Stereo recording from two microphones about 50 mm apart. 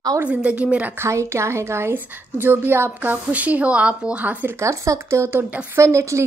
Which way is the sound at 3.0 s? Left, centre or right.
Right.